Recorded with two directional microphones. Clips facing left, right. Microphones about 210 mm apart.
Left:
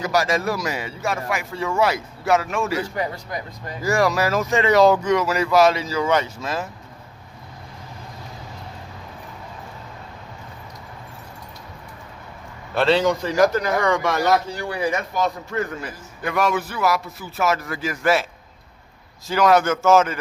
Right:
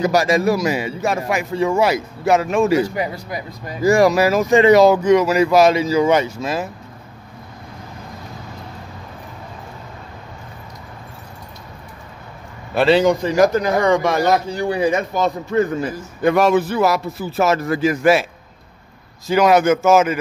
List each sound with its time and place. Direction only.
0.0 s speech: 20° right (ahead or behind)
12.7 s a man's voice: 10° right (ahead or behind); by 17.9 s 25° right (ahead or behind)
19.2 s speech: 15° right (ahead or behind)